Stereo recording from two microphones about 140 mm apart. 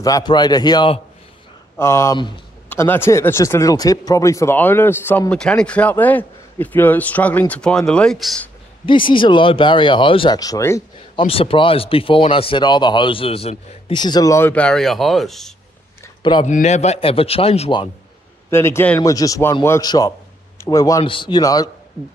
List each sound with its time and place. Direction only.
0.0 s speech: 30° left (ahead or behind)
1.8 s a man's voice: 20° left (ahead or behind); by 8.5 s centre (ahead or behind)
8.8 s speech: 35° left (ahead or behind)
11.1 s speech: 40° left (ahead or behind)
13.9 s speech: 30° left (ahead or behind)
14.5 s speech: 5° left (ahead or behind)
16.2 s speech: 35° left (ahead or behind)
16.4 s a man's voice: 60° left (ahead or behind); by 17.8 s 40° left (ahead or behind)
18.5 s speech: 15° left (ahead or behind)
19.9 s a sound: 25° left (ahead or behind)
21.0 s speech: 35° left (ahead or behind)